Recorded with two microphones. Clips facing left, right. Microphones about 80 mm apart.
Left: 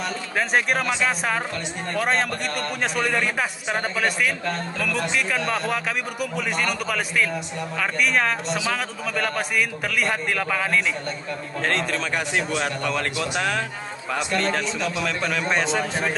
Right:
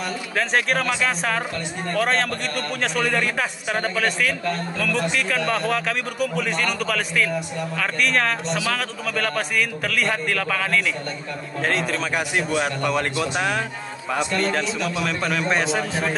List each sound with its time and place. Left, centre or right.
0.4 s a man's voice: centre
5.4 s speech: centre
5.7 s a man's voice: centre
11.6 s a man's voice: centre
14.4 s speech: centre